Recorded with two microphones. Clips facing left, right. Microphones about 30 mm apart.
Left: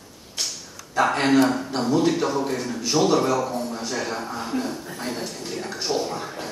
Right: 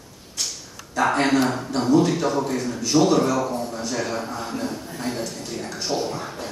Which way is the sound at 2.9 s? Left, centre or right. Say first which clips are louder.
Right 1 dB; centre.